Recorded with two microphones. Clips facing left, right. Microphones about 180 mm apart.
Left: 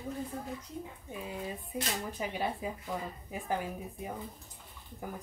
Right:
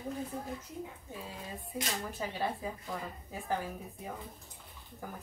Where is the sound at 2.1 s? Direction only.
15° left (ahead or behind).